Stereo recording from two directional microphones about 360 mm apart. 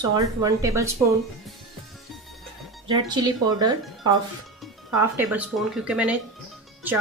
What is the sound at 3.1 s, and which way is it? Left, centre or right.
Speech, centre.